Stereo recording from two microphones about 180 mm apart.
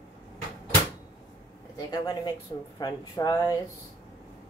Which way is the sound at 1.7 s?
20° left (ahead or behind).